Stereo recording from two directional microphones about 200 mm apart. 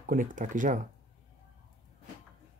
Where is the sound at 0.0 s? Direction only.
45° right (ahead or behind).